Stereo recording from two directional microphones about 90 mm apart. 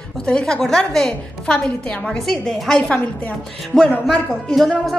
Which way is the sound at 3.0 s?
15° left (ahead or behind).